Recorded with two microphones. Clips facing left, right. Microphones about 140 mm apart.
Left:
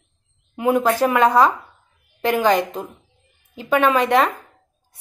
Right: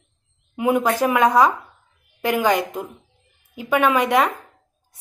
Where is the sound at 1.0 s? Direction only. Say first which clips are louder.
Left 1 dB; 10° right (ahead or behind).